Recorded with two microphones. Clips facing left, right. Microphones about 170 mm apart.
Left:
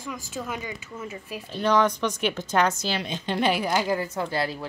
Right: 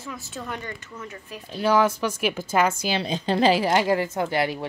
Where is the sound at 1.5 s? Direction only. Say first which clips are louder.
Right 1 dB; 5° right (ahead or behind).